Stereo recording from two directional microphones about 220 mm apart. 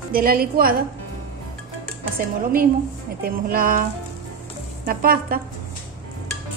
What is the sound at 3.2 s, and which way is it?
Speech, 40° right (ahead or behind).